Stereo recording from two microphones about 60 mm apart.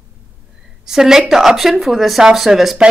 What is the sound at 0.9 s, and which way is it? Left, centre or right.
A woman's voice, centre.